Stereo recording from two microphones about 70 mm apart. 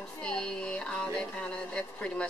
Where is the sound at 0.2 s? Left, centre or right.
Centre.